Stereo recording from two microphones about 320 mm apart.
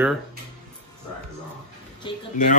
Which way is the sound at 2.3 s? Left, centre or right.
Left.